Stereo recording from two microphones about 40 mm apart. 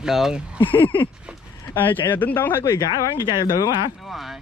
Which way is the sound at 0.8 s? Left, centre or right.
Left.